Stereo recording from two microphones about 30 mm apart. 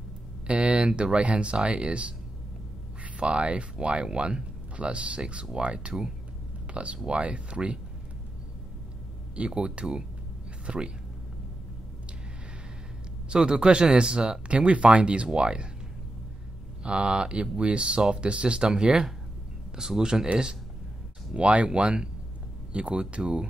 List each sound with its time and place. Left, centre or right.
0.5 s speech: right
7.4 s speech: right
9.5 s speech: right
13.3 s speech: right
14.5 s speech: right
16.8 s speech: right; by 20.3 s centre
21.4 s speech: right
22.7 s speech: right